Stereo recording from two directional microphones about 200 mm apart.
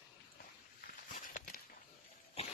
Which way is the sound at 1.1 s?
45° left (ahead or behind).